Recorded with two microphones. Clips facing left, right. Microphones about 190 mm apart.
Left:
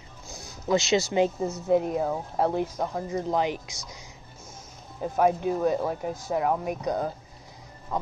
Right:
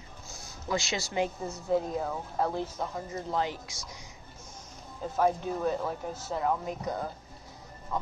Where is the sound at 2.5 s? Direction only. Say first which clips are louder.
Left 6 dB; 15° left (ahead or behind).